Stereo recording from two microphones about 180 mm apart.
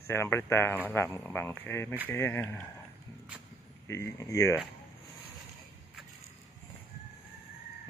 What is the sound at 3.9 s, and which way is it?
Speech, 15° left (ahead or behind).